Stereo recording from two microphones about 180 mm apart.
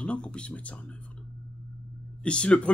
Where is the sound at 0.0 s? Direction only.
5° left (ahead or behind).